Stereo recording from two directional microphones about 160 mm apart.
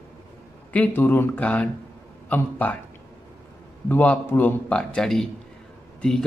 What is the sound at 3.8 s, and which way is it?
A man's voice, 10° left (ahead or behind).